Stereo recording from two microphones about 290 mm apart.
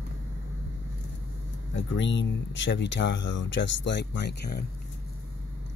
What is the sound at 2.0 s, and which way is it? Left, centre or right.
Speech, left.